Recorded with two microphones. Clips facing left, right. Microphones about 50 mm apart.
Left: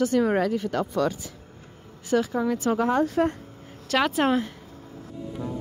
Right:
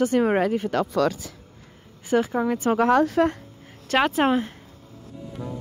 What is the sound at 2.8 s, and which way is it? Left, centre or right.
Speech, right.